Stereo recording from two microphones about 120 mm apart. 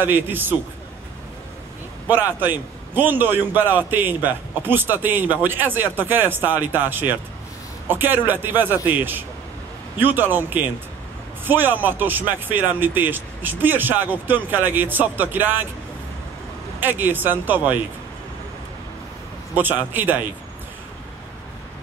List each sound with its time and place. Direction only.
0.0 s a man's voice: 15° right (ahead or behind)
2.0 s a man's voice: 15° right (ahead or behind)
16.8 s a man's voice: 15° right (ahead or behind)
19.5 s a man's voice: 15° right (ahead or behind)